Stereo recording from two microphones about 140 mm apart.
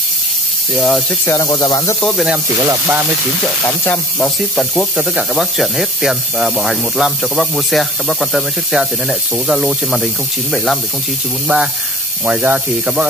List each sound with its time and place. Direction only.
0.7 s speech: 5° left (ahead or behind)
1.2 s speech: 25° left (ahead or behind)
2.0 s speech: centre (ahead or behind)
2.7 s speech: 15° right (ahead or behind)
3.6 s sizzle: 15° left (ahead or behind)
4.6 s speech: 5° right (ahead or behind)